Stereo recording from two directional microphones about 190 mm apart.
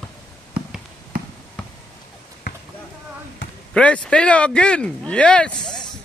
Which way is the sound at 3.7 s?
5° left (ahead or behind).